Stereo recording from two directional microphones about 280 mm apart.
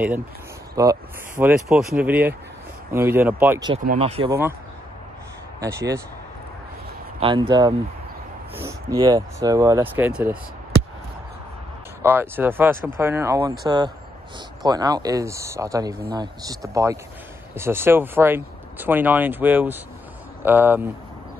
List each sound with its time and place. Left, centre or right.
0.8 s speech: centre
3.8 s speech: right
5.6 s speech: centre
7.2 s speech: centre
12.0 s speech: centre